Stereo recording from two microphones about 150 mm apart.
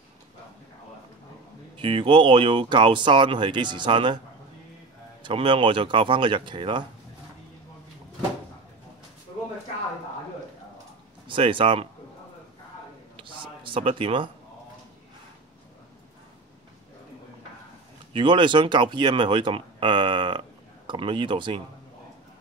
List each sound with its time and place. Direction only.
1.8 s speech: 35° right (ahead or behind)
5.2 s speech: 35° right (ahead or behind)
11.2 s speech: 35° right (ahead or behind)
13.1 s a sound: 35° right (ahead or behind)
18.1 s speech: 30° right (ahead or behind)